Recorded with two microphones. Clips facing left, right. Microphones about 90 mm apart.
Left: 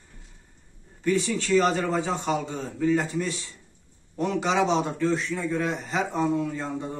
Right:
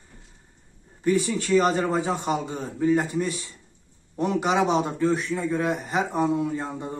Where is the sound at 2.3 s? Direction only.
20° right (ahead or behind).